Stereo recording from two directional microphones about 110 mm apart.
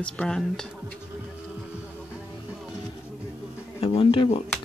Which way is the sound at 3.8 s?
55° left (ahead or behind).